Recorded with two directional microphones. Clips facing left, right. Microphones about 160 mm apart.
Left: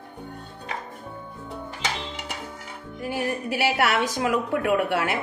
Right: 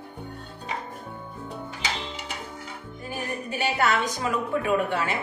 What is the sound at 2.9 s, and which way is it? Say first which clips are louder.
A woman's voice: left 6 dB; 80° left.